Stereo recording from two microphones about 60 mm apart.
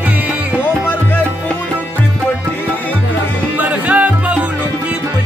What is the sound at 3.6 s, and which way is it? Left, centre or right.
Music, right.